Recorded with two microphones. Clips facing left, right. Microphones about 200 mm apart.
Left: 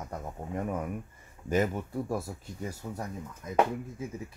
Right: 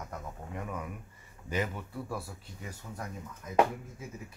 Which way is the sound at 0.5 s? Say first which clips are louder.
Left 7 dB; 45° left (ahead or behind).